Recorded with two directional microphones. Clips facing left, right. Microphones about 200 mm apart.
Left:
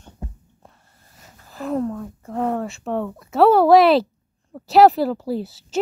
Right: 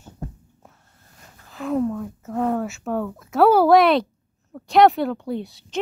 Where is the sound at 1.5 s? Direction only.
Centre (ahead or behind).